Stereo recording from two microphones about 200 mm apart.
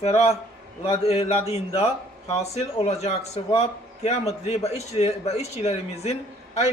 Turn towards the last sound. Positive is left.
turn(degrees=30)  # may be behind; listen again after turning